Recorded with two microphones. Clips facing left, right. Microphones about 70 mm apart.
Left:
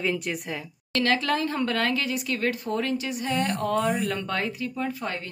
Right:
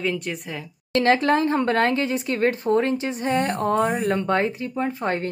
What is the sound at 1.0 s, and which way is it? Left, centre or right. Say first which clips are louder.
Speech: right 6 dB; right.